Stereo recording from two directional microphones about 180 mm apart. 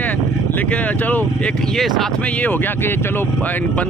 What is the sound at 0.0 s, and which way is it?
Speech, 10° left (ahead or behind).